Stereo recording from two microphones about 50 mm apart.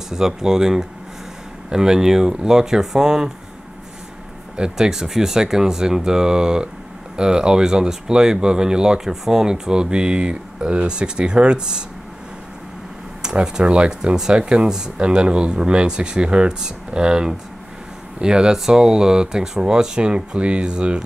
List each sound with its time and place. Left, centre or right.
0.1 s speech: centre
4.6 s speech: centre
13.2 s speech: centre